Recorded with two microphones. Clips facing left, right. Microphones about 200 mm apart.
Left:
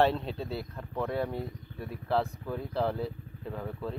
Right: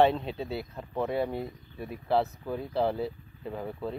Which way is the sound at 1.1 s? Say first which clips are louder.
Right 2 dB; 10° right (ahead or behind).